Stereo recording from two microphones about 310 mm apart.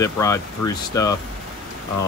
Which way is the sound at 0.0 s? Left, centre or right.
Centre.